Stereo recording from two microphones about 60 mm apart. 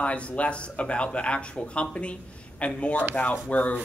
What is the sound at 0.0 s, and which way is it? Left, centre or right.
Speech, left.